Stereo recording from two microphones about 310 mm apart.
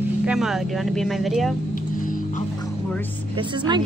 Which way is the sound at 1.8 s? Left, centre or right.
Left.